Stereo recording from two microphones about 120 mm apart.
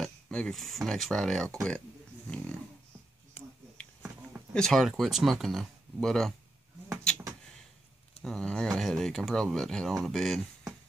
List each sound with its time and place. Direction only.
0.0 s speech: 5° left (ahead or behind)
3.4 s finger snapping: 55° left (ahead or behind)
4.6 s speech: centre (ahead or behind)
8.2 s speech: 5° left (ahead or behind)